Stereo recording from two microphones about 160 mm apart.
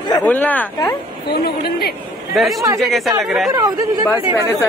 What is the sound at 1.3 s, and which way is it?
Speech, 80° left.